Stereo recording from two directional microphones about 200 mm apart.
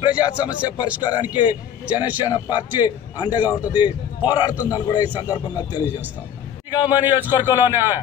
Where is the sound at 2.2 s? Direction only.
20° left (ahead or behind).